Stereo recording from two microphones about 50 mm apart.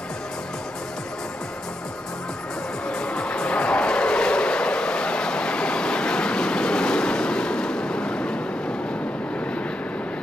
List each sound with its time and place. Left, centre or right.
2.9 s music: centre